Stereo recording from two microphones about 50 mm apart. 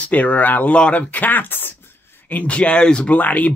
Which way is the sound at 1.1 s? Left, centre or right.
Left.